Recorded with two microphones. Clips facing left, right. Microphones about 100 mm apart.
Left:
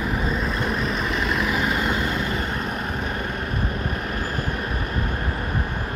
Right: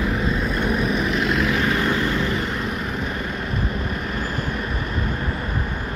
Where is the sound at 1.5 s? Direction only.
15° left (ahead or behind).